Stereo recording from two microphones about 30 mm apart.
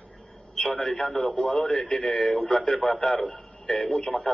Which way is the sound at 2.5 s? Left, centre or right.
Left.